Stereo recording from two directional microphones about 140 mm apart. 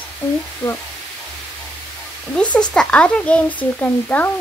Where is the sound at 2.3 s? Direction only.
10° left (ahead or behind).